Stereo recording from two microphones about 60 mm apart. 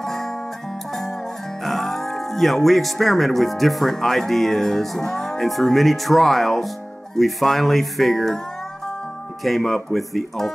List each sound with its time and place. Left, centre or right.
0.0 s music: centre
1.6 s speech: centre
9.4 s speech: centre